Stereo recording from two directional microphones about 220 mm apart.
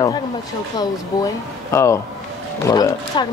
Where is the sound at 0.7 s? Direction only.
15° left (ahead or behind).